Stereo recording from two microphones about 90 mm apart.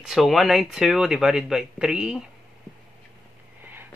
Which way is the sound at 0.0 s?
5° right (ahead or behind).